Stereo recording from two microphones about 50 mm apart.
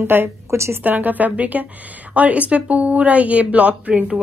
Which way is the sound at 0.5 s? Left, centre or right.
Right.